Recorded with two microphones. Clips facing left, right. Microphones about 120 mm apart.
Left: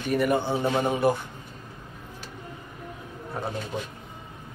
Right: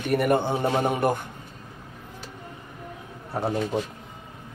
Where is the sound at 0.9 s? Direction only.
50° right (ahead or behind).